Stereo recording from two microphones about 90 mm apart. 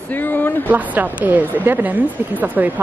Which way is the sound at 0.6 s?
20° right (ahead or behind).